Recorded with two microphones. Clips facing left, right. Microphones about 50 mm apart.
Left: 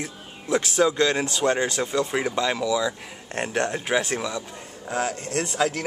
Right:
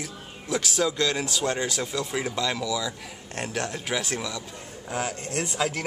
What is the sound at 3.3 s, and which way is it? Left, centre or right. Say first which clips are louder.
Speech: left 5 dB; left.